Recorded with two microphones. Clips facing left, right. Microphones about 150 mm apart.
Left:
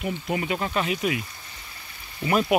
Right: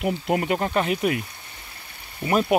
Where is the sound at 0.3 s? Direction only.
50° right (ahead or behind).